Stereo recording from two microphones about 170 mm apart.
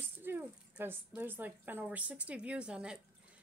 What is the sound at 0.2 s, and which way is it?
A woman's voice, 10° right (ahead or behind).